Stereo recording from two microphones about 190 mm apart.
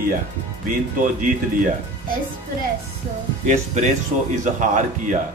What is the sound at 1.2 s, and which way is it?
Speech, 45° right (ahead or behind).